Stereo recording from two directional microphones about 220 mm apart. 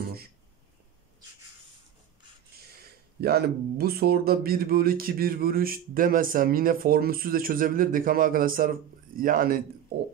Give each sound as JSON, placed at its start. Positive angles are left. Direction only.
{"t": 3.2, "sound": "speech", "side_deg": -45}